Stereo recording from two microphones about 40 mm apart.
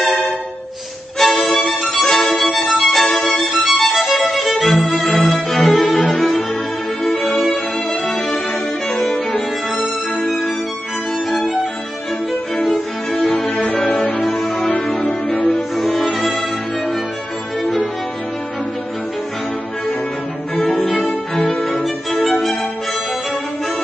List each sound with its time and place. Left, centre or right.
1.1 s violin: centre
1.5 s music: centre
5.0 s music: left
5.6 s cello: left
7.2 s music: centre
12.5 s music: left
15.3 s cello: left
20.9 s music: left